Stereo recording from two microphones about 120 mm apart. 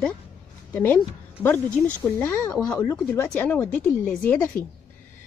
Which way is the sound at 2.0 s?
15° left (ahead or behind).